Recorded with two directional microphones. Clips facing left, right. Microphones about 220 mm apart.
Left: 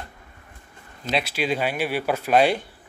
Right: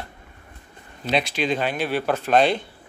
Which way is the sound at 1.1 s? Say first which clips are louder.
Right 2 dB; 5° left (ahead or behind).